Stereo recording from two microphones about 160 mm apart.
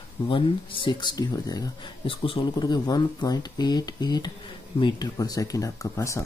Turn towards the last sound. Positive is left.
turn(degrees=20)  # may be behind; listen again after turning